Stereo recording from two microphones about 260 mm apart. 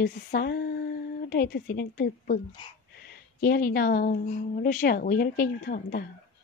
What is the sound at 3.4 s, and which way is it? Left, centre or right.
A woman's voice, left.